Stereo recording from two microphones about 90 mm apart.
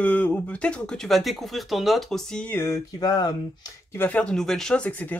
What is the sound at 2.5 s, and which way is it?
Speech, 25° left (ahead or behind).